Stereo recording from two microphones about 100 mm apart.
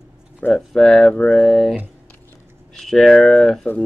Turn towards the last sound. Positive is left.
turn(degrees=5)  # may be behind; listen again after turning